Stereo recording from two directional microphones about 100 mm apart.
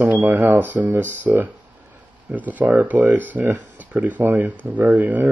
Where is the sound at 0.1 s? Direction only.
20° right (ahead or behind).